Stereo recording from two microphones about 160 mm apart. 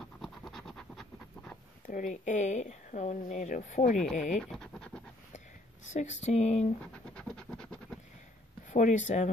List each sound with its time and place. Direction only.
0.0 s scratch: centre (ahead or behind)
1.9 s speech: 50° left (ahead or behind)
4.4 s scratch: 5° left (ahead or behind)
5.9 s speech: 45° left (ahead or behind)
6.8 s scratch: 5° left (ahead or behind)
8.7 s speech: 50° left (ahead or behind)